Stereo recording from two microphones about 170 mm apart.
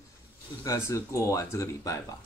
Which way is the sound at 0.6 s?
15° left (ahead or behind).